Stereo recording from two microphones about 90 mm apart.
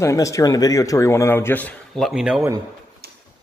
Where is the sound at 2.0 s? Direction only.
5° right (ahead or behind).